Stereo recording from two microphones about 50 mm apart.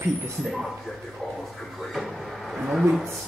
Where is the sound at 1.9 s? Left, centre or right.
Centre.